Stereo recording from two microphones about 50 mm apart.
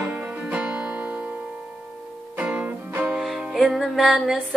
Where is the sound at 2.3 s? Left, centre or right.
Right.